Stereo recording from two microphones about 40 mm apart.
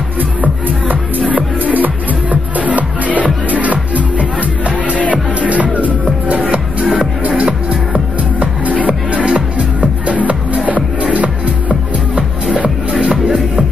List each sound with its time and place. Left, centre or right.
1.3 s music: right
12.6 s music: right